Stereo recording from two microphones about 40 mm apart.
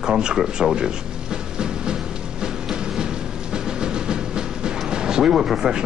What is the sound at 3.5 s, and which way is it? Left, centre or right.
Speech, right.